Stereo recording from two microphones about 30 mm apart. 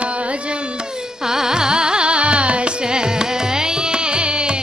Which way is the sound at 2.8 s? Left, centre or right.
Right.